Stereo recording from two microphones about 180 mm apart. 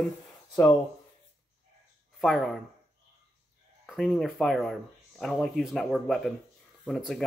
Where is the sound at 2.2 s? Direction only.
Centre (ahead or behind).